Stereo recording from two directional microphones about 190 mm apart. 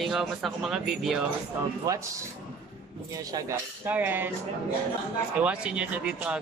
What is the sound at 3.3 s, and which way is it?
Speech, 10° right (ahead or behind).